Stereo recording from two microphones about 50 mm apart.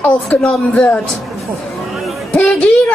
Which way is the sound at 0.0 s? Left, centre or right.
Left.